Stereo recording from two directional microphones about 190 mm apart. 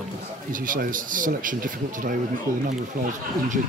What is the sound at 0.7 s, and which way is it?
A man's voice, 45° right (ahead or behind).